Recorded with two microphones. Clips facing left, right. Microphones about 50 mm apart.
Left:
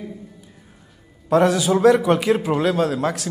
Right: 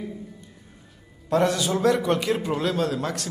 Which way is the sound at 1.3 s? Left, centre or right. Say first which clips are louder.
Left 5 dB; centre.